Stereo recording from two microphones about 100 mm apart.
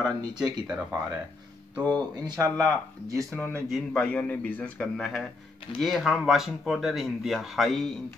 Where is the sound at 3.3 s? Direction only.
15° right (ahead or behind).